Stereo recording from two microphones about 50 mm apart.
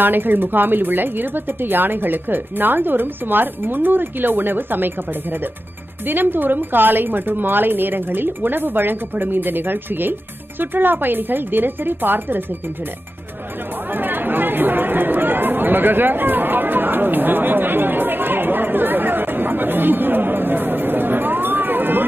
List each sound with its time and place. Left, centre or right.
0.0 s speech: right
6.0 s speech: right
13.9 s chatter: right